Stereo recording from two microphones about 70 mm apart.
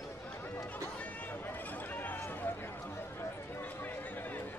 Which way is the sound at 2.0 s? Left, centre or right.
Left.